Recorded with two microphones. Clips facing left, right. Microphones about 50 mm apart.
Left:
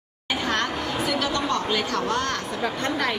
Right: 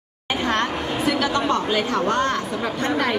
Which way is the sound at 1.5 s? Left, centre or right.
Centre.